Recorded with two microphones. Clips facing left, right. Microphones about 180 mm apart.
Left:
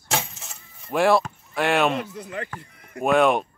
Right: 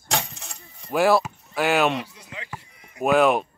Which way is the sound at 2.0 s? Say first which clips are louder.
Left 8 dB; 55° left (ahead or behind).